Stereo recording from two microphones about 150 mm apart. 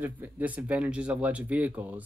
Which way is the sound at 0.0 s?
10° right (ahead or behind).